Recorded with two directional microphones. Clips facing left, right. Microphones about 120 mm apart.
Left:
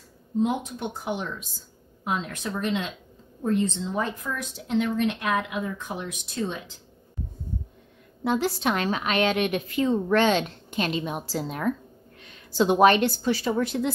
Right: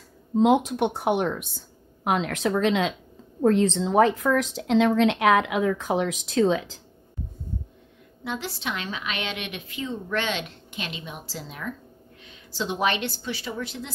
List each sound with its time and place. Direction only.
0.4 s speech: 90° right; by 1.6 s 65° right (ahead or behind)
2.0 s a woman's voice: 85° right
8.2 s a woman's voice: 45° left (ahead or behind)